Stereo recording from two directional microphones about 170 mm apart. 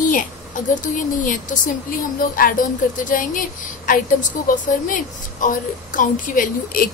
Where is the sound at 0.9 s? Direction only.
50° left (ahead or behind).